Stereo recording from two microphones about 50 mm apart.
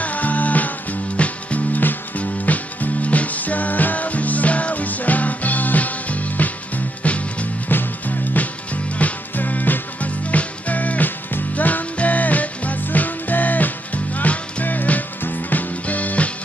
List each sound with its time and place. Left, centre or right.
0.0 s music: left
7.7 s music: left
8.9 s music: left